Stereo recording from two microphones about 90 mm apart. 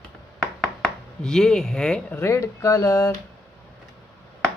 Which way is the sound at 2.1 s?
30° left (ahead or behind).